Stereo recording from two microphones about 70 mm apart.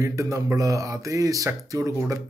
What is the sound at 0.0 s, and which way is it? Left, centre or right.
Speech, right.